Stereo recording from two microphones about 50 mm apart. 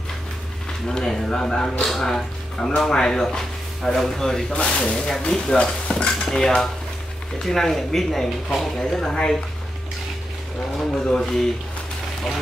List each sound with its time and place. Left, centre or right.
0.8 s speech: centre
4.5 s speech: left
10.9 s speech: centre